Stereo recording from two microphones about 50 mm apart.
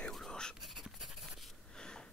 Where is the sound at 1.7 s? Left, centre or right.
Centre.